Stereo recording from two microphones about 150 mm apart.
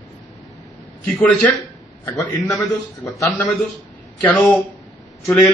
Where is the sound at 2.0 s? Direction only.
20° left (ahead or behind).